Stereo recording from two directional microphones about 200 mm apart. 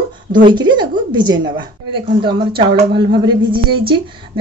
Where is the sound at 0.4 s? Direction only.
25° right (ahead or behind).